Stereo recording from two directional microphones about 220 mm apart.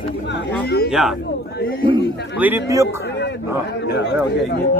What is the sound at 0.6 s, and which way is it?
Speech, 45° left (ahead or behind).